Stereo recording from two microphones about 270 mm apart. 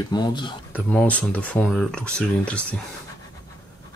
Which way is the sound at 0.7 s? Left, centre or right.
Centre.